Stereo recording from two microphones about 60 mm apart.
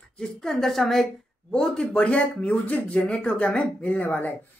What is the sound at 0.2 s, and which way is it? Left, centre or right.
Speech, centre.